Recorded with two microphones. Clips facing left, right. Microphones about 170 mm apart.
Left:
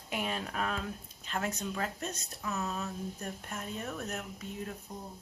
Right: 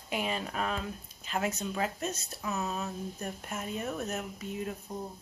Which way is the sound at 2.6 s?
15° right (ahead or behind).